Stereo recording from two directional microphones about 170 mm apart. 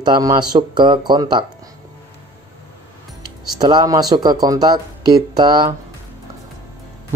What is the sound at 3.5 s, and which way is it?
A man's voice, 25° right (ahead or behind).